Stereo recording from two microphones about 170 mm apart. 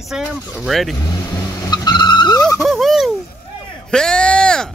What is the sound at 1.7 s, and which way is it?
Vehicle, 25° left (ahead or behind).